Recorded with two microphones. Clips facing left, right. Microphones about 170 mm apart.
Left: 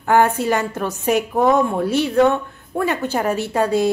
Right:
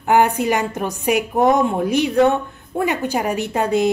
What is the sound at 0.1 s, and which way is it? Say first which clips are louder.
A woman's voice: even; 15° right (ahead or behind).